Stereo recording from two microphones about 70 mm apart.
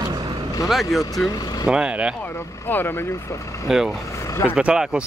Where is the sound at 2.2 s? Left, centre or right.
Left.